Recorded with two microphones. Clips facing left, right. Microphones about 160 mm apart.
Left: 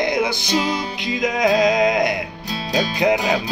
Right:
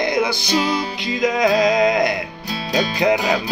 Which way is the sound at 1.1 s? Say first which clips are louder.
Right 1 dB; 15° left (ahead or behind).